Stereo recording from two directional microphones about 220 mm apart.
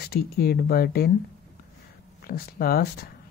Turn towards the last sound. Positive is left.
turn(degrees=45)  # may be behind; listen again after turning